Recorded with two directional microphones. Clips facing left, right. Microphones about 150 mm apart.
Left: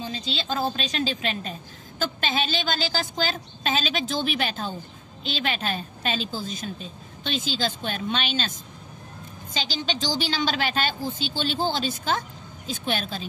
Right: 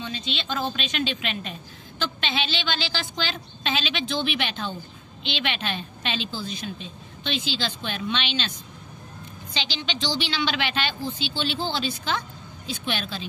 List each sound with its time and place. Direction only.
0.0 s a woman's voice: 35° left (ahead or behind)